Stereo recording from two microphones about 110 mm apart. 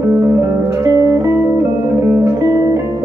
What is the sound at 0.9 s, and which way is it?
Music, 25° right (ahead or behind).